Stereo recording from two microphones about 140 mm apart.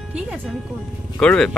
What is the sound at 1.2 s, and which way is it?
Speech, 5° left (ahead or behind).